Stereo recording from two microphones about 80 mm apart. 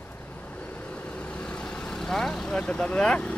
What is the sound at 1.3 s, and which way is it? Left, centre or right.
Vehicle, centre.